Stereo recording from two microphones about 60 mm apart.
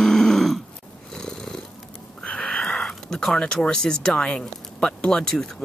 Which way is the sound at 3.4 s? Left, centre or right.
Centre.